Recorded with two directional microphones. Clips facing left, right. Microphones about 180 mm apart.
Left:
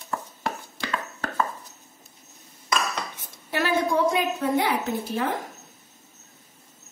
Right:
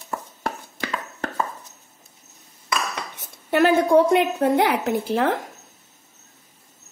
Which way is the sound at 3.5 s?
55° right (ahead or behind).